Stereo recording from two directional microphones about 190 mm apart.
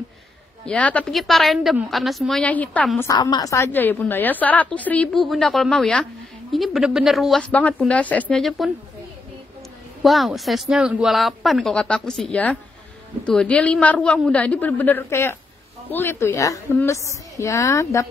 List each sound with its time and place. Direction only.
0.7 s speech: 5° left (ahead or behind)
3.1 s a woman's voice: 20° left (ahead or behind); by 8.7 s centre (ahead or behind)
10.0 s a woman's voice: centre (ahead or behind); by 18.0 s 15° left (ahead or behind)